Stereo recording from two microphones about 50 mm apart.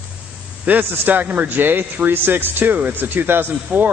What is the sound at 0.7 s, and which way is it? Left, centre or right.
A man's voice, right.